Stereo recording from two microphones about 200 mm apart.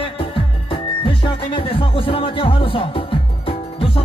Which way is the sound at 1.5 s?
25° left (ahead or behind).